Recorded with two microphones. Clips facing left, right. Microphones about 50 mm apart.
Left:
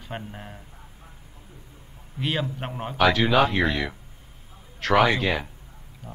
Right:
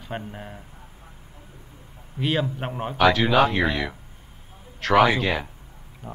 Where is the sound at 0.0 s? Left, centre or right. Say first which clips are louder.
Right 2 dB; centre.